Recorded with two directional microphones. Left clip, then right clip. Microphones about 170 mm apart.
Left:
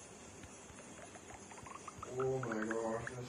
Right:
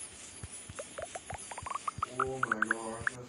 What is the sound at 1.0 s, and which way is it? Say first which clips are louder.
Rodents: right 13 dB; 55° right (ahead or behind).